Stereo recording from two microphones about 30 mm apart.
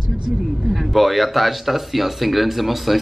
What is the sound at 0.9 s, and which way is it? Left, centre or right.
Speech, centre.